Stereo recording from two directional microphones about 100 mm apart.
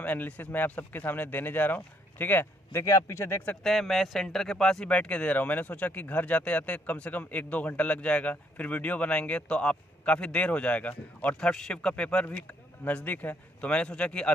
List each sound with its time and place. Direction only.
0.0 s speech: 15° left (ahead or behind)
2.8 s a man's voice: 30° left (ahead or behind)
3.6 s speech: centre (ahead or behind)